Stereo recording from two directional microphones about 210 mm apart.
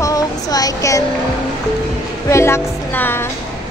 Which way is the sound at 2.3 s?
10° left (ahead or behind).